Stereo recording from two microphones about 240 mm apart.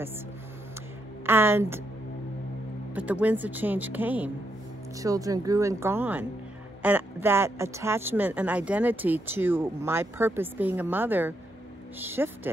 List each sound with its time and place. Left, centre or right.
1.2 s speech: centre
2.9 s speech: centre